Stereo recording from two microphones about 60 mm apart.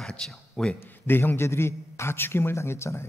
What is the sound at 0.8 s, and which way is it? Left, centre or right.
A man's voice, left.